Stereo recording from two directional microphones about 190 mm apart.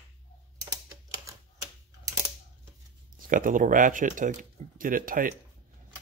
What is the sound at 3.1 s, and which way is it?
Speech, 45° right (ahead or behind).